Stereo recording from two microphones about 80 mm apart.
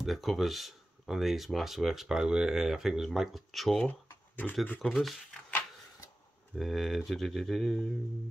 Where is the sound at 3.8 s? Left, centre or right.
Centre.